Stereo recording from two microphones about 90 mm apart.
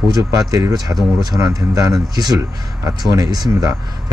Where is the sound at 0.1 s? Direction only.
40° right (ahead or behind).